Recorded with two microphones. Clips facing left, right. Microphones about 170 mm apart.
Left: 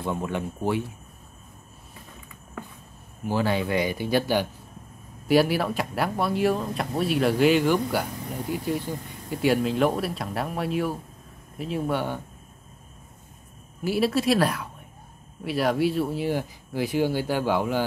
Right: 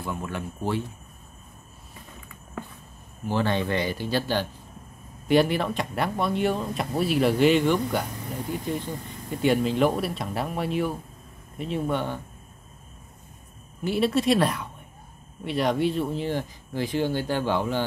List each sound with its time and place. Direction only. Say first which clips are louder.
0.0 s speech: left 4 dB; 20° left (ahead or behind)
3.3 s speech: even; 10° left (ahead or behind)
13.8 s speech: even; 5° left (ahead or behind)